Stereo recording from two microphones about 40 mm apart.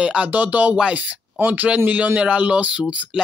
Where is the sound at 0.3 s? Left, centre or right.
Right.